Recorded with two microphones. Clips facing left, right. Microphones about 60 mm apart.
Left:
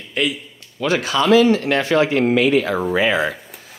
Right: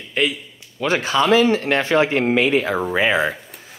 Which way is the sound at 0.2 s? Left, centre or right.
Right.